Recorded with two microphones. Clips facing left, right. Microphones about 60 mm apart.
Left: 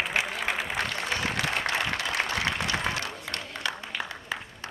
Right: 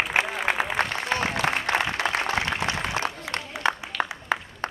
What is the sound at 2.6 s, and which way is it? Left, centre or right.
Applause, right.